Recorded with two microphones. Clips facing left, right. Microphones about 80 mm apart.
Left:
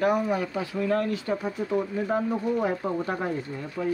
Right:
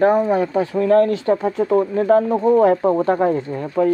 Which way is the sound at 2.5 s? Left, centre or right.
Right.